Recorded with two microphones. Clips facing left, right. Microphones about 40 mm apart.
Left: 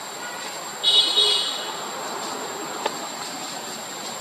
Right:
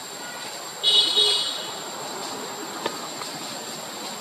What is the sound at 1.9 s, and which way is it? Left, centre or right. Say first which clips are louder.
Insect: left 3 dB; centre.